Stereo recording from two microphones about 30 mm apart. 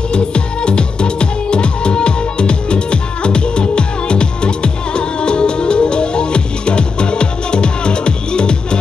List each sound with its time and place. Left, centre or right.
0.1 s music: left